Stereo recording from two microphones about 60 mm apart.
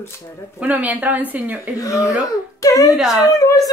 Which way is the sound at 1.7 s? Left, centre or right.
Left.